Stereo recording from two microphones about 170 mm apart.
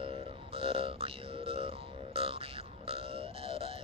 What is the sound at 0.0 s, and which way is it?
Music, 35° right (ahead or behind).